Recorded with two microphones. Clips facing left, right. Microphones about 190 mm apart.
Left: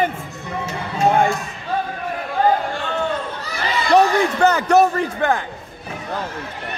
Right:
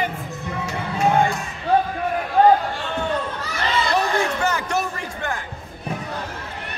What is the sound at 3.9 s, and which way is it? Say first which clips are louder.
Speech: left 11 dB; 65° left (ahead or behind).